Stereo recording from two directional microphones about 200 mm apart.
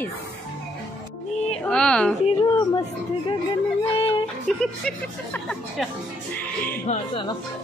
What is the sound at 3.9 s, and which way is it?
Speech, 25° left (ahead or behind).